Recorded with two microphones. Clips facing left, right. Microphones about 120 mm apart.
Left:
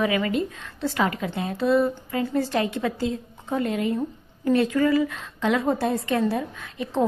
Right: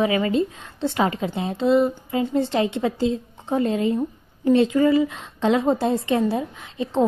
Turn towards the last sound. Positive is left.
turn(degrees=-25)  # may be behind; listen again after turning